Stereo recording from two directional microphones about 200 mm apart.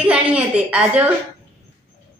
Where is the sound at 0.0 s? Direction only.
5° right (ahead or behind).